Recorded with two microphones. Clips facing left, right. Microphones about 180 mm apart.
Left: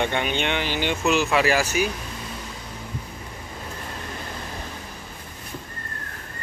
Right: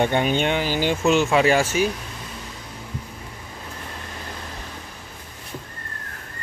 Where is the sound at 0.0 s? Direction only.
40° right (ahead or behind).